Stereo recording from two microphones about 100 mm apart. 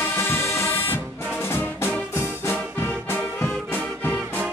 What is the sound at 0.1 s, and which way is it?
Music, 25° left (ahead or behind).